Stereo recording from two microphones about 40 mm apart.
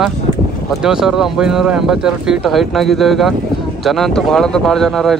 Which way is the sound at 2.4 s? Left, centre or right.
Centre.